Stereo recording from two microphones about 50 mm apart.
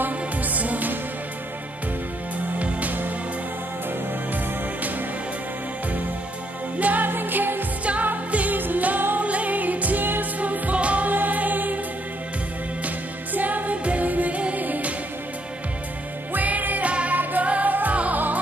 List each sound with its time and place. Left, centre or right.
0.0 s music: right
2.6 s music: right
6.8 s music: right
7.8 s music: right
12.8 s music: right
16.3 s music: right